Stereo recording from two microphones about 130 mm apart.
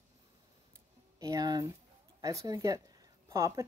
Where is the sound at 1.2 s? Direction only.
30° right (ahead or behind).